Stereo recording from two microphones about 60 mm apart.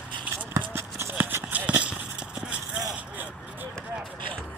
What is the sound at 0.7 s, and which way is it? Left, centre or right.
Run, right.